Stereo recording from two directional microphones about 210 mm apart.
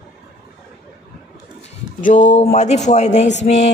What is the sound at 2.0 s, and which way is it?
Speech, 35° left (ahead or behind).